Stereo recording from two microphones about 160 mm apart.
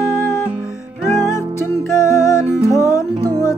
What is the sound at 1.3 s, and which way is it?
Music, 15° left (ahead or behind).